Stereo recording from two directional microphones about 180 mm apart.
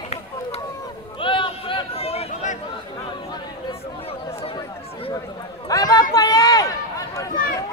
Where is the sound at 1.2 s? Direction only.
30° left (ahead or behind).